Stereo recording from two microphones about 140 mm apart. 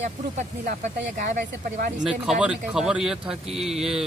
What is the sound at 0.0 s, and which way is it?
Speech, 55° right (ahead or behind).